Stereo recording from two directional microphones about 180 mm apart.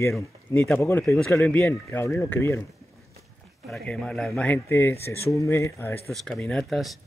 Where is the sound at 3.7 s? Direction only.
5° left (ahead or behind).